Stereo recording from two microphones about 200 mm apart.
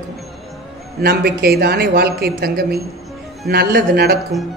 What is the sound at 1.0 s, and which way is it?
Speech, 50° right (ahead or behind).